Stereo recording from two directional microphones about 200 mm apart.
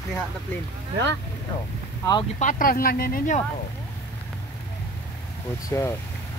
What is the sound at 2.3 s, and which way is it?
Speech, 40° left (ahead or behind).